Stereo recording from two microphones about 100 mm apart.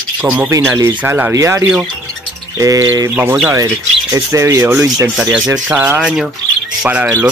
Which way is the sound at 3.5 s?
30° right (ahead or behind).